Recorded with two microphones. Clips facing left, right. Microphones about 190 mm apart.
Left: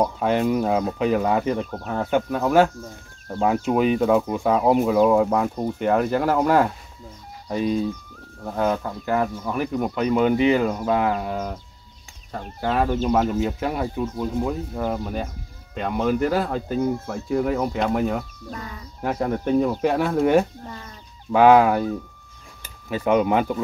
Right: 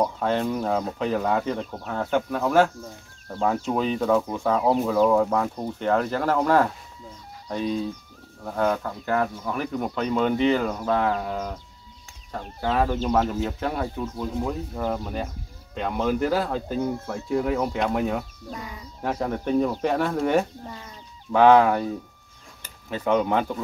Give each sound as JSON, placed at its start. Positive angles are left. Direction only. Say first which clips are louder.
{"t": 0.0, "sound": "speech", "louder": "left 3 dB", "side_deg": 10}
{"t": 18.5, "sound": "speech", "louder": "left 1 dB", "side_deg": -10}
{"t": 19.0, "sound": "speech", "louder": "left 3 dB", "side_deg": 5}
{"t": 20.6, "sound": "speech", "louder": "left 1 dB", "side_deg": -10}
{"t": 21.3, "sound": "speech", "louder": "left 2 dB", "side_deg": 10}